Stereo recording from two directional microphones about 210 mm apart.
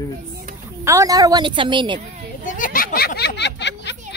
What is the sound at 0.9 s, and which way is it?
A woman's voice, 15° right (ahead or behind).